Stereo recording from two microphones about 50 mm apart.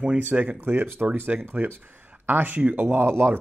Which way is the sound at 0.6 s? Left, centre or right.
Right.